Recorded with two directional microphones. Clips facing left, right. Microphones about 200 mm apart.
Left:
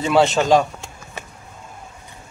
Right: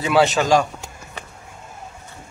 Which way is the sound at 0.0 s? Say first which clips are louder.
Left 1 dB; 5° right (ahead or behind).